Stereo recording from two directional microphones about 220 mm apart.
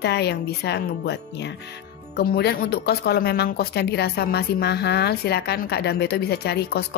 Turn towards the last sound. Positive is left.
turn(degrees=45)  # may be behind; listen again after turning